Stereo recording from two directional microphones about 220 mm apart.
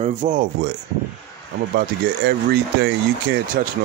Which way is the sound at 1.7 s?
45° right (ahead or behind).